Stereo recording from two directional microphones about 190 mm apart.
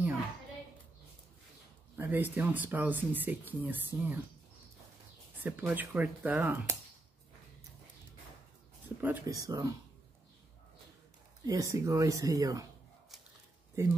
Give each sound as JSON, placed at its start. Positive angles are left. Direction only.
{"t": 2.0, "sound": "speech", "side_deg": -10}
{"t": 5.6, "sound": "speech", "side_deg": -10}
{"t": 8.8, "sound": "speech", "side_deg": -10}
{"t": 11.4, "sound": "speech", "side_deg": -15}
{"t": 13.8, "sound": "speech", "side_deg": -15}